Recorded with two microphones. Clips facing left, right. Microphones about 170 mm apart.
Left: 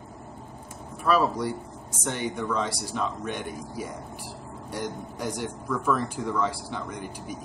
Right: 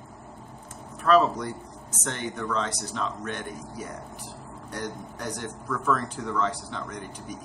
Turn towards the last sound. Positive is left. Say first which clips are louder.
# left 2 dB
turn(degrees=10)  # may be behind; listen again after turning